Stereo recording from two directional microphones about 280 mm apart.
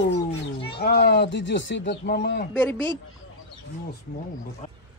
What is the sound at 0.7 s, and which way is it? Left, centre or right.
Speech, left.